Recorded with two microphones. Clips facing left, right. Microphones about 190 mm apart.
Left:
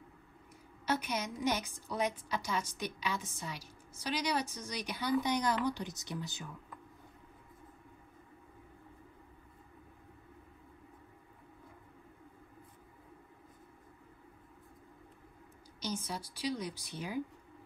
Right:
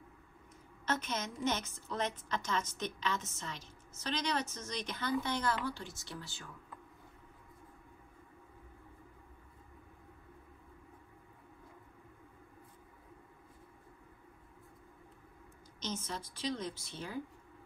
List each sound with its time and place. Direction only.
0.8 s a woman's voice: 10° left (ahead or behind)
15.8 s a woman's voice: 10° left (ahead or behind)